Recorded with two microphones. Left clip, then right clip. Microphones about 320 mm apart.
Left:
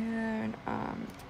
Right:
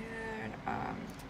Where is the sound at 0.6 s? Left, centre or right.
Centre.